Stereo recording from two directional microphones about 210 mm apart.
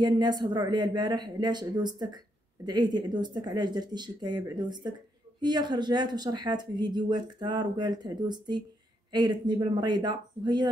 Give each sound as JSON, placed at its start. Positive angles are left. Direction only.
{"t": 0.0, "sound": "speech", "side_deg": -20}